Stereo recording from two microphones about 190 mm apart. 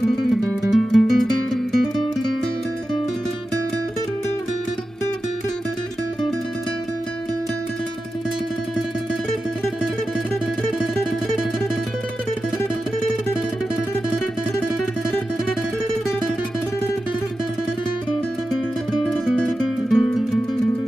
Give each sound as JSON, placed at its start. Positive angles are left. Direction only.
{"t": 0.2, "sound": "music", "side_deg": 0}
{"t": 19.0, "sound": "music", "side_deg": 5}